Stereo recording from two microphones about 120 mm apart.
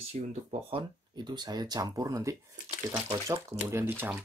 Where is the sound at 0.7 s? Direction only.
45° right (ahead or behind).